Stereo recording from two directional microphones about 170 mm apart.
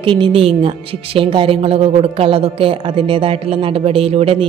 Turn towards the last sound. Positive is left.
turn(degrees=-35)  # may be behind; listen again after turning